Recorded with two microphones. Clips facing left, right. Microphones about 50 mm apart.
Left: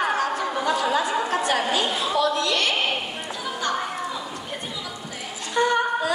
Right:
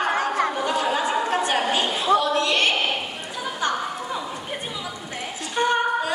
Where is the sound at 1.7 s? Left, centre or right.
Right.